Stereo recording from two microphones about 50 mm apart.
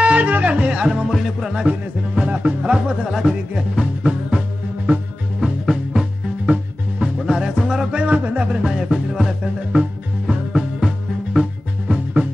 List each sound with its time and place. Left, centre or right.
0.0 s music: right
1.1 s music: centre
1.7 s speech: right
3.1 s music: centre
5.4 s music: centre
6.4 s music: centre
8.7 s music: centre